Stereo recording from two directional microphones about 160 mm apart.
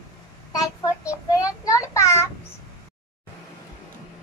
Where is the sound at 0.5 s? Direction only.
20° left (ahead or behind).